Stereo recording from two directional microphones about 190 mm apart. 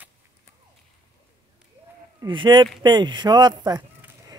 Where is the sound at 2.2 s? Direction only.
25° right (ahead or behind).